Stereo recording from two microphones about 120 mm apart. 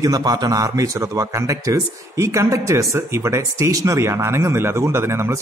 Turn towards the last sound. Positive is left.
turn(degrees=-20)  # may be behind; listen again after turning